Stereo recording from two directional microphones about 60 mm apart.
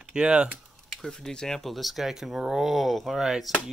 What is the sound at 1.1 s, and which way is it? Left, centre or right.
Speech, centre.